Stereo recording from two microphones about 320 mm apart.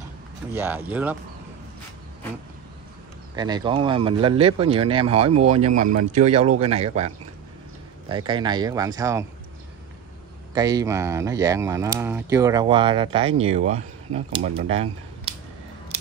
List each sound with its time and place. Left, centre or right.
0.6 s speech: centre
3.3 s speech: centre
8.1 s speech: centre
10.5 s speech: centre
15.9 s scissors: centre